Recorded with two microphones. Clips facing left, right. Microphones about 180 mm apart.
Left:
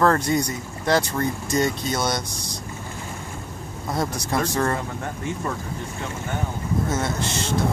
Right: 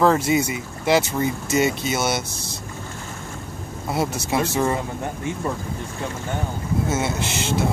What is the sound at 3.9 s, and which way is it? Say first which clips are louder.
Speech: right 2 dB; 5° right (ahead or behind).